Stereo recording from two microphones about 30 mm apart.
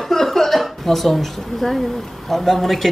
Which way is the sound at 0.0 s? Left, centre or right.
Centre.